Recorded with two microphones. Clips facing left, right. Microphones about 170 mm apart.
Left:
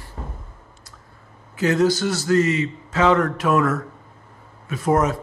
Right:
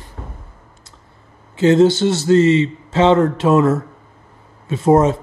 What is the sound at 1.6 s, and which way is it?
A man's voice, 25° right (ahead or behind).